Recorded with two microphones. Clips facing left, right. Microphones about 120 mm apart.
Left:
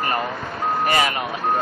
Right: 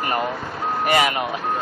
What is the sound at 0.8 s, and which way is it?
Speech, 10° right (ahead or behind).